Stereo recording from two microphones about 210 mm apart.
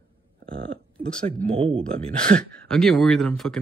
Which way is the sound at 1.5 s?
25° right (ahead or behind).